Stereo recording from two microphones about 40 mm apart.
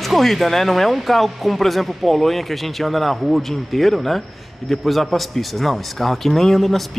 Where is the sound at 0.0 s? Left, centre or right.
Centre.